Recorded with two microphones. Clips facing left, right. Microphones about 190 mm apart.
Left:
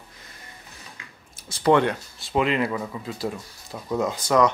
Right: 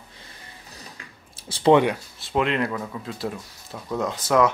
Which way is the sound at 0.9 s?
30° right (ahead or behind).